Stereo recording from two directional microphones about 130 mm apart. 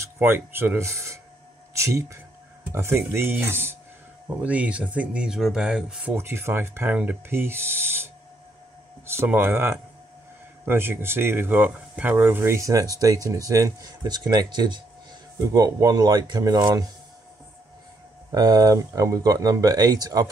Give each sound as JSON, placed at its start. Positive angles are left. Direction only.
{"t": 0.0, "sound": "speech", "side_deg": -20}
{"t": 6.1, "sound": "speech", "side_deg": -20}
{"t": 18.3, "sound": "speech", "side_deg": -30}